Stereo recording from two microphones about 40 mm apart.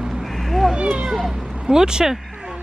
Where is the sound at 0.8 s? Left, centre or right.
Right.